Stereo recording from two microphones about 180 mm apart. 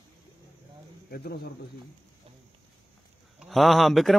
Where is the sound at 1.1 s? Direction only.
60° left (ahead or behind).